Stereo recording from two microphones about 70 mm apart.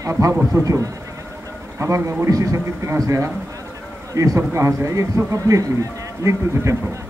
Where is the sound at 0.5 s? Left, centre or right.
Right.